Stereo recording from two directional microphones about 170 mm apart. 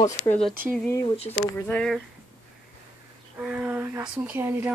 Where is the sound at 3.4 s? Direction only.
10° right (ahead or behind).